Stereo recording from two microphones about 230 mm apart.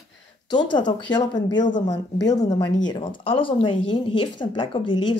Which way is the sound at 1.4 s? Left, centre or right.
Left.